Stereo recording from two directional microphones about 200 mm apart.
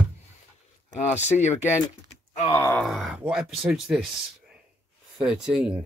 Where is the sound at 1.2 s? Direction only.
35° left (ahead or behind).